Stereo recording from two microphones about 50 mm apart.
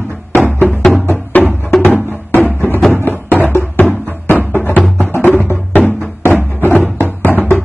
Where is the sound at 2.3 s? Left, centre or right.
Left.